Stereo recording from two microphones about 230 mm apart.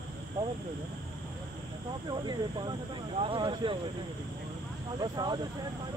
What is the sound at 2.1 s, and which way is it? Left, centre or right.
Speech, centre.